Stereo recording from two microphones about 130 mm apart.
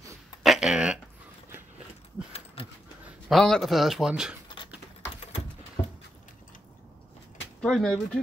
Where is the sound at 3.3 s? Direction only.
Centre (ahead or behind).